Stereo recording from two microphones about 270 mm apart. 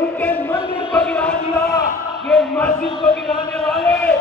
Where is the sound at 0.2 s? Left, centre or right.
Centre.